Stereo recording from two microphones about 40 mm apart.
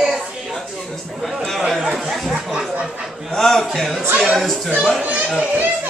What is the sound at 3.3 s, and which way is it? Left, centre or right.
A man's voice, centre.